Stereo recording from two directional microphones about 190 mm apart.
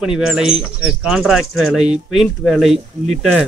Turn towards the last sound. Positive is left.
turn(degrees=0)  # may be behind; listen again after turning